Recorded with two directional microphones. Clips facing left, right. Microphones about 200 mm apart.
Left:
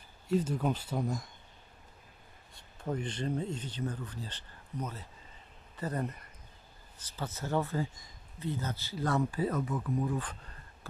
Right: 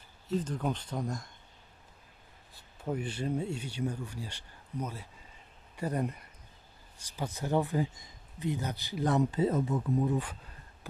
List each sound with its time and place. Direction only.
0.3 s speech: 10° left (ahead or behind)
2.5 s speech: 5° right (ahead or behind); by 10.2 s 25° right (ahead or behind)
10.2 s a sound: 10° right (ahead or behind)